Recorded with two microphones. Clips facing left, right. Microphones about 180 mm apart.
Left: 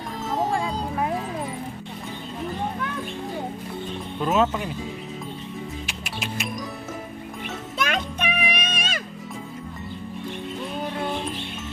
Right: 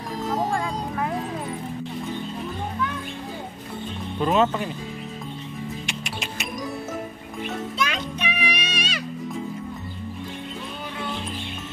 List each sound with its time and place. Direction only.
0.4 s music: 25° left (ahead or behind)
4.2 s speech: centre (ahead or behind)
5.9 s music: centre (ahead or behind)
7.8 s music: 50° left (ahead or behind)